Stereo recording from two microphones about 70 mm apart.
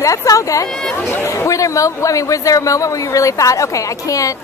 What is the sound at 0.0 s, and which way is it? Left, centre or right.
A man's voice, left.